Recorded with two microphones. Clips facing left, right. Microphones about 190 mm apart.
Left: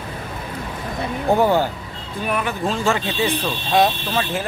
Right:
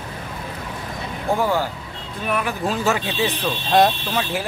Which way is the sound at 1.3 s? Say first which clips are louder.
Left 4 dB; 20° left (ahead or behind).